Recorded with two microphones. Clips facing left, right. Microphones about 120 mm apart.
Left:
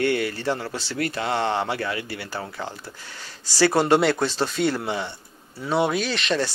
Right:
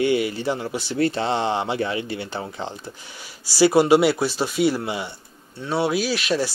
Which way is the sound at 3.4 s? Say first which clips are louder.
Right 3 dB; 10° right (ahead or behind).